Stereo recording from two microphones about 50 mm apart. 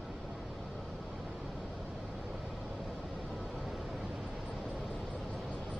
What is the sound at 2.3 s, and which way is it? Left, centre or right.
Vehicle, centre.